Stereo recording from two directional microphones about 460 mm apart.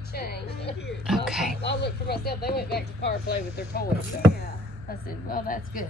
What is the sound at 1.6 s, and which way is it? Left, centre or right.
Speech, left.